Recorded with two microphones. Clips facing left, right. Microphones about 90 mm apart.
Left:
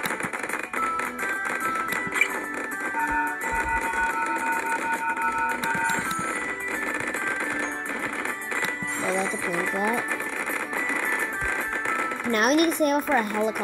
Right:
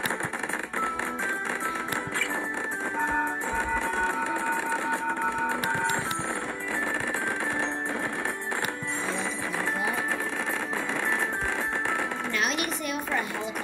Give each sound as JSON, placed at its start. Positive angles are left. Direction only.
{"t": 12.3, "sound": "a child's voice", "side_deg": 50}